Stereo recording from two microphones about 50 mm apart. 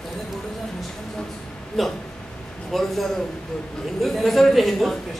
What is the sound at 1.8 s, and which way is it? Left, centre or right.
Speech, centre.